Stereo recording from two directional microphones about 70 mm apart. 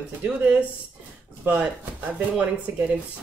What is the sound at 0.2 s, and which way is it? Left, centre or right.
Speech, centre.